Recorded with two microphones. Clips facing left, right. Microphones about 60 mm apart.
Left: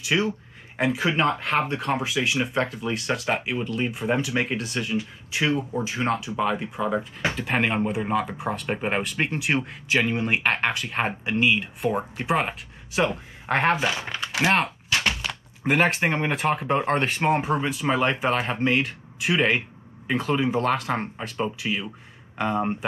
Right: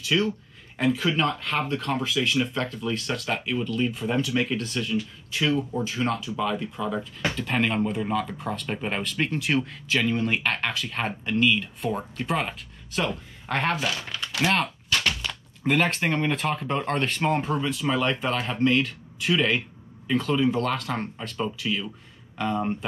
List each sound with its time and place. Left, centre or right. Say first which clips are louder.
0.0 s speech: even; centre
3.3 s speech: right 1 dB; left
4.8 s speech: even; centre
7.0 s speech: left 1 dB; centre
9.8 s speech: left 2 dB; centre
21.6 s speech: even; left